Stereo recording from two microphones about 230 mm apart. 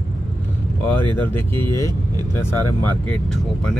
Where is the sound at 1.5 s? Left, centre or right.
Right.